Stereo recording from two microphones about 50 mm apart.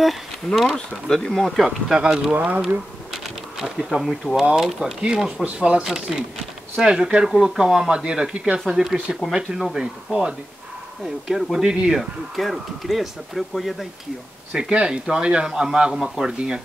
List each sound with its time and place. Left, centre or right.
0.0 s speech: centre
2.0 s speech: centre
2.3 s speech: right
3.1 s a sound: centre
4.4 s speech: centre
5.9 s speech: centre
8.5 s speech: centre
9.8 s speech: centre
11.7 s speech: centre
14.5 s speech: centre